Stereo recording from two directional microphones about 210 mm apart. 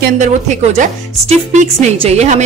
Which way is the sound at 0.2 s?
35° right (ahead or behind).